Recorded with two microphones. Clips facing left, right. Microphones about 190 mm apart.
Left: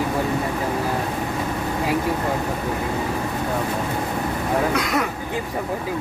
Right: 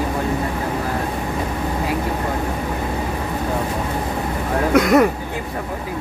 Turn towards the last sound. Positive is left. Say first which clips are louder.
# right 9 dB
turn(degrees=-50)  # may be behind; listen again after turning